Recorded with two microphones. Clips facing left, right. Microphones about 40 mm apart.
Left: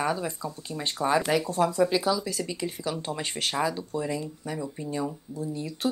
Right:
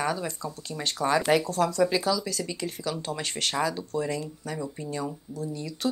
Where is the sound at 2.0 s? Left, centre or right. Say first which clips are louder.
Even; left.